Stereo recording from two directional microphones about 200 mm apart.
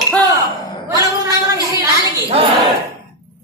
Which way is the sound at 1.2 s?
15° right (ahead or behind).